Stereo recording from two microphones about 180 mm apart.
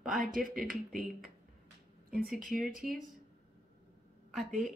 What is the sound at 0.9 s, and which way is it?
Speech, centre (ahead or behind).